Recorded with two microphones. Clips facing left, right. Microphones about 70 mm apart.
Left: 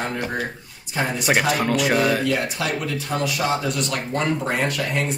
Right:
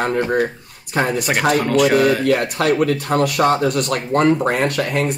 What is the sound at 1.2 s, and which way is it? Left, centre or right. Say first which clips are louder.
Speech: left 1 dB; centre.